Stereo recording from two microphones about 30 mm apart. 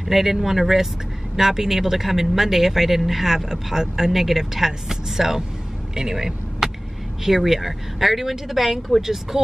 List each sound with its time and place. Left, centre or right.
0.1 s speech: centre
6.6 s vehicle: centre
7.2 s speech: centre